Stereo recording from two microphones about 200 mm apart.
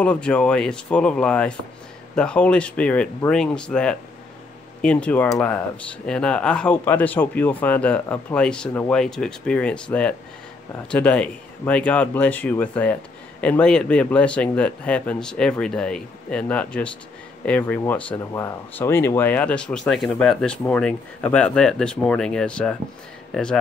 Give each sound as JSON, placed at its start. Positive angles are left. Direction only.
{"t": 0.0, "sound": "speech", "side_deg": 5}